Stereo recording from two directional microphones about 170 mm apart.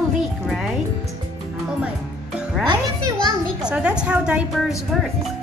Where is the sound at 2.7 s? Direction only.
25° right (ahead or behind).